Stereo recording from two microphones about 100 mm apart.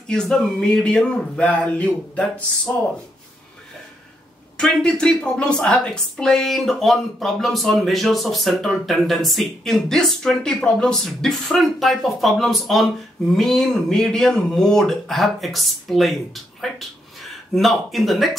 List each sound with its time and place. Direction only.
0.1 s speech: 5° left (ahead or behind)
4.6 s a woman's voice: 5° left (ahead or behind)
17.6 s a woman's voice: centre (ahead or behind)